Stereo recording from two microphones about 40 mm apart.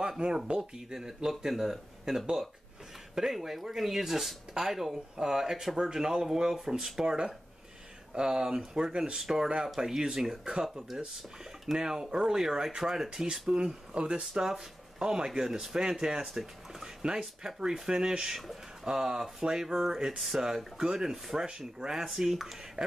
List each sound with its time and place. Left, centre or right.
0.5 s speech: centre
16.8 s a sound: centre
17.6 s speech: centre